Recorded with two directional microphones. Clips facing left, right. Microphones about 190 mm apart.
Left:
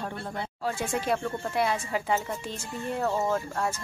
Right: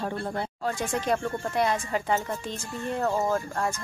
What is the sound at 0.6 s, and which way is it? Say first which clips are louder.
A child's voice: even; 10° left (ahead or behind).